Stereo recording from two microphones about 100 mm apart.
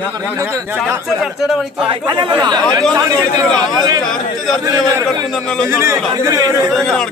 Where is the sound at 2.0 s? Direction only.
45° right (ahead or behind).